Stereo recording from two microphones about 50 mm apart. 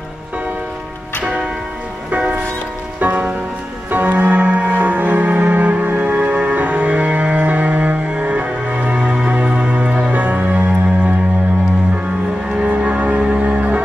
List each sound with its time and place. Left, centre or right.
1.2 s music: centre
3.0 s rain on surface: right
3.9 s music: right
12.5 s music: right